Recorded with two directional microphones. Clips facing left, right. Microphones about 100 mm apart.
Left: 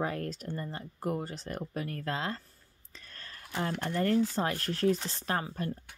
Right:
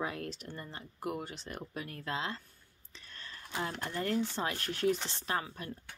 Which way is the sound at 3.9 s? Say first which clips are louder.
Left 6 dB; 40° left (ahead or behind).